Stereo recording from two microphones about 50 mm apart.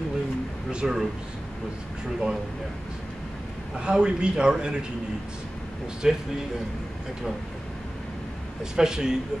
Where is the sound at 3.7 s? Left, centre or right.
Centre.